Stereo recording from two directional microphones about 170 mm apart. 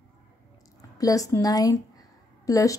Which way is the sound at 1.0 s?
20° left (ahead or behind).